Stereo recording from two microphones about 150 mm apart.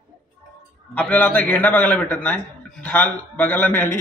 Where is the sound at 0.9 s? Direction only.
10° left (ahead or behind).